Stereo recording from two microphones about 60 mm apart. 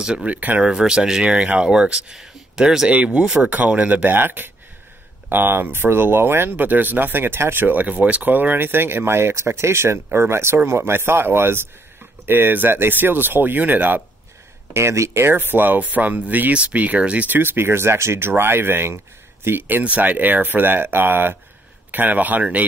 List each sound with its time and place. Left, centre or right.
0.0 s speech: centre; by 6.5 s right
6.5 s speech: right
14.7 s speech: right
17.4 s speech: right
19.8 s speech: right